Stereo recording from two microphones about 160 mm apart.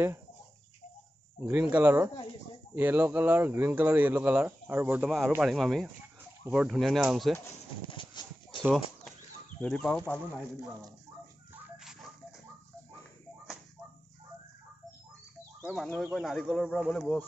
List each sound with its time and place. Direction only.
1.5 s speech: 10° right (ahead or behind)
7.9 s horse: 30° left (ahead or behind)
9.6 s speech: centre (ahead or behind)
11.8 s a sound: 5° right (ahead or behind)
15.6 s speech: centre (ahead or behind)